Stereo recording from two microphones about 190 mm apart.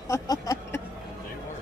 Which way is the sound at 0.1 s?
15° left (ahead or behind).